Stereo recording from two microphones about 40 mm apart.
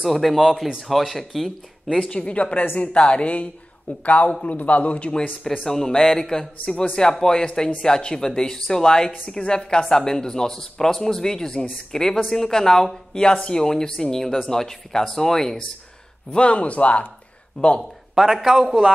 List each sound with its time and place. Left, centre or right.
0.1 s speech: centre
2.0 s a man's voice: left
5.6 s speech: centre
16.3 s a man's voice: left
17.6 s speech: left
18.1 s a man's voice: centre